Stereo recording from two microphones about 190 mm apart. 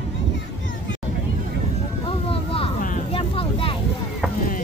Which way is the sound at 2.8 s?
30° left (ahead or behind).